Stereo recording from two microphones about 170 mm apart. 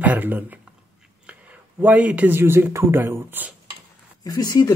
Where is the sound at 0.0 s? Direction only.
10° right (ahead or behind).